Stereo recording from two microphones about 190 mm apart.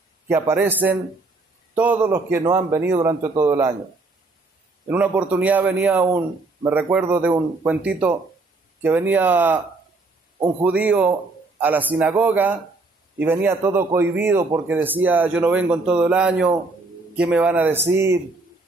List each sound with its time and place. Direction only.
0.3 s a man's voice: 15° right (ahead or behind)
4.8 s a man's voice: 10° right (ahead or behind)
10.6 s a man's voice: 5° right (ahead or behind)